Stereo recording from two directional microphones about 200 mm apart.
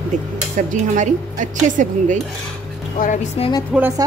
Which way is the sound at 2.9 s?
40° left (ahead or behind).